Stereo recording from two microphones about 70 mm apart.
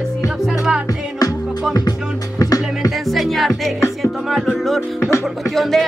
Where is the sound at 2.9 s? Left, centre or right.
Centre.